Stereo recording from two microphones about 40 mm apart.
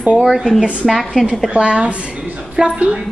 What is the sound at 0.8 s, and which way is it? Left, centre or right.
Speech, centre.